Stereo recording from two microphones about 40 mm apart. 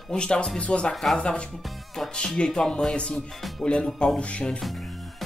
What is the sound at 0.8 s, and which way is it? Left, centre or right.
Speech, centre.